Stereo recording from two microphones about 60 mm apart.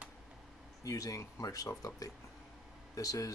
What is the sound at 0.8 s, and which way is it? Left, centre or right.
Speech, left.